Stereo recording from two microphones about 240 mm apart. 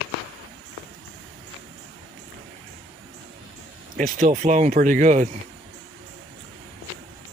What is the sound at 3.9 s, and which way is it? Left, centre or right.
Speech, right.